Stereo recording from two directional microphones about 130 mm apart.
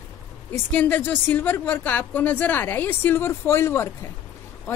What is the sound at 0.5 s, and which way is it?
A woman's voice, 10° left (ahead or behind).